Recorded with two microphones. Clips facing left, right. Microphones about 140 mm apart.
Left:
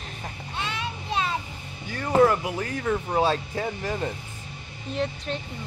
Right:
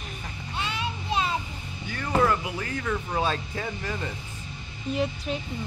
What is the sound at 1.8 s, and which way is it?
Speech, 30° left (ahead or behind).